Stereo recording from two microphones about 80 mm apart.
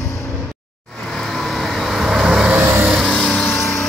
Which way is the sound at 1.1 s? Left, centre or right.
Centre.